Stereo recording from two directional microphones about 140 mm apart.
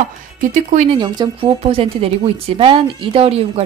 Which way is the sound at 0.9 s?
30° right (ahead or behind).